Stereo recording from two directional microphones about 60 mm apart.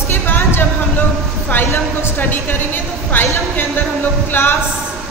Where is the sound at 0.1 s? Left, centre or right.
Left.